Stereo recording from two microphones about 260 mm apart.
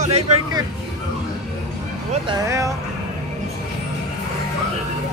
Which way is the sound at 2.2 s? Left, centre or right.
Centre.